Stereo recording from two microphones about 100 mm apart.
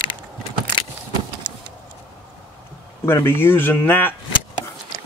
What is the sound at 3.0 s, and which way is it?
Speech, 25° left (ahead or behind).